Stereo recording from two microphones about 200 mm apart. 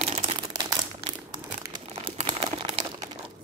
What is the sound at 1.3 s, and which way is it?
Crumpling, 20° right (ahead or behind).